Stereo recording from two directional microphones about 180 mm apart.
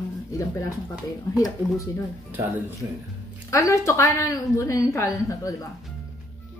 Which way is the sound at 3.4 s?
15° left (ahead or behind).